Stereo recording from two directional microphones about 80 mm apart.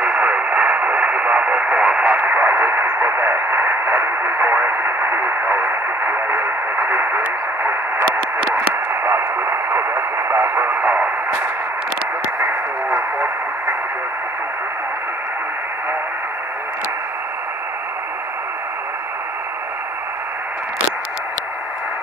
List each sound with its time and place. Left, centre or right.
0.0 s radio: centre
2.1 s radio: right
10.5 s radio: right
12.4 s a sound: right